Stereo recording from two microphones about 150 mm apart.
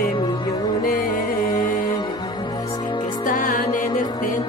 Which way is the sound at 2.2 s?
30° left (ahead or behind).